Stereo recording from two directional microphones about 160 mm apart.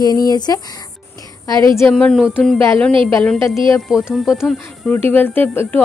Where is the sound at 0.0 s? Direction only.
25° left (ahead or behind).